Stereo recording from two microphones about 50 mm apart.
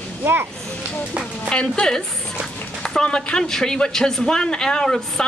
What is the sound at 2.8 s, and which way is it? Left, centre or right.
Speech, centre.